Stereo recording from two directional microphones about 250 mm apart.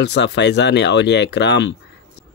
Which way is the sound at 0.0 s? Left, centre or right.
Left.